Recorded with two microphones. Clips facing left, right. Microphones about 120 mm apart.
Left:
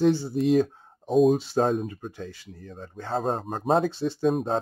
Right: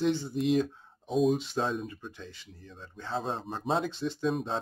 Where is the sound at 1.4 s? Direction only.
40° left (ahead or behind).